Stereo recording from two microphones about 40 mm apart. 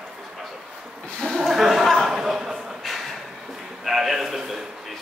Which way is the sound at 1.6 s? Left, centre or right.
Centre.